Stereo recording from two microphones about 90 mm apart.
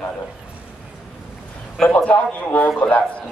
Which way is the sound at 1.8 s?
15° left (ahead or behind).